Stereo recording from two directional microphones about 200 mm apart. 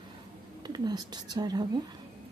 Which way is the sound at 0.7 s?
20° right (ahead or behind).